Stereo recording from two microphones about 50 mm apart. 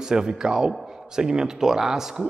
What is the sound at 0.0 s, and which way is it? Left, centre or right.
Speech, centre.